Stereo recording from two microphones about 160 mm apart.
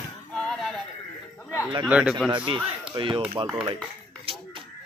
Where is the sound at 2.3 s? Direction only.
30° right (ahead or behind).